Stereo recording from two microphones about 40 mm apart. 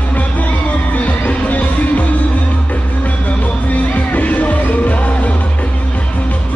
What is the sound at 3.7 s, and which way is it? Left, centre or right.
Music, left.